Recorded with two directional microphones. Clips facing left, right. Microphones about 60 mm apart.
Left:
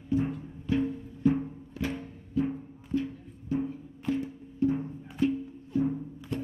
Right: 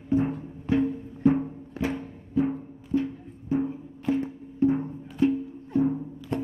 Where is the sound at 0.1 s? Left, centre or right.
Right.